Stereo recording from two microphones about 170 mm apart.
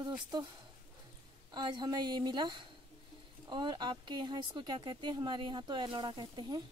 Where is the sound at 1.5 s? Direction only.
25° right (ahead or behind).